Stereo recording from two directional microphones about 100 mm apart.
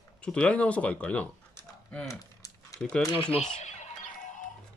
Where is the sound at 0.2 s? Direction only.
10° left (ahead or behind).